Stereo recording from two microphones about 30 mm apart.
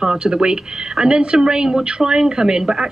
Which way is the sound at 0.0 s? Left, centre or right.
Right.